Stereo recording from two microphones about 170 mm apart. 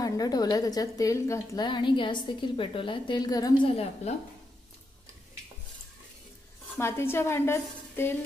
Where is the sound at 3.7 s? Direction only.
35° left (ahead or behind).